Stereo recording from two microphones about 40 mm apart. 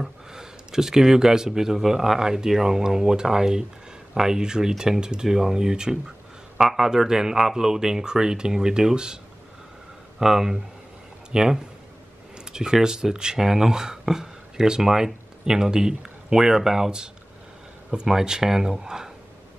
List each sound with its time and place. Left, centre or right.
0.0 s a man's voice: centre